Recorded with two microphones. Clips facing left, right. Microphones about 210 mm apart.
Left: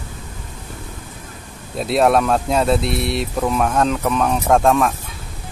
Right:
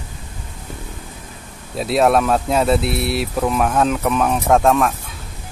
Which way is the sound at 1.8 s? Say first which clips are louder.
Even; centre (ahead or behind).